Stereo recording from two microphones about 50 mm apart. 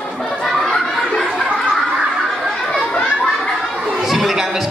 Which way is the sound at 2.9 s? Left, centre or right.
Left.